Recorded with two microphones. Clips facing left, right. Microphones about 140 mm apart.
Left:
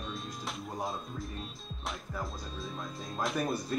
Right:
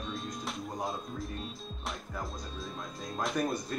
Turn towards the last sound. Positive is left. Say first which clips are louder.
# even
turn(degrees=0)  # may be behind; listen again after turning